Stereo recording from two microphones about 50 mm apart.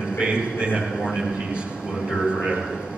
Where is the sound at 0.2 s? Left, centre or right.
Right.